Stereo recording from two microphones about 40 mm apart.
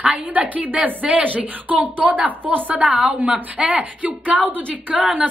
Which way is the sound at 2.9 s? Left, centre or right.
Right.